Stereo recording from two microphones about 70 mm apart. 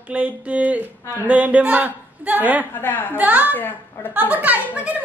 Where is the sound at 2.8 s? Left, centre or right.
Left.